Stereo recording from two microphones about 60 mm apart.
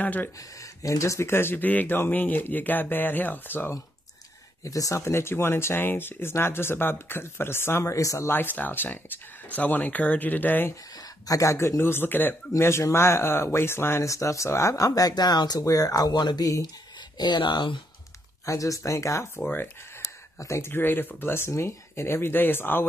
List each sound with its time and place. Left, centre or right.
0.0 s speech: left
0.6 s speech: left
4.6 s speech: left
5.0 s speech: left
7.9 s speech: left
8.3 s speech: left
11.2 s speech: left
11.5 s speech: left
14.0 s speech: left
18.4 s speech: left
19.4 s speech: left
20.3 s speech: left
20.6 s speech: left